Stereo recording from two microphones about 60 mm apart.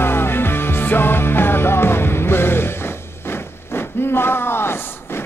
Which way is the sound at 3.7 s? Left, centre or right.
Left.